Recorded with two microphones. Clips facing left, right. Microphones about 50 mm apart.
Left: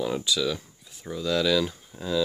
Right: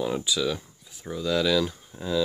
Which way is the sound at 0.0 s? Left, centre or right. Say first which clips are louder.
Even; centre.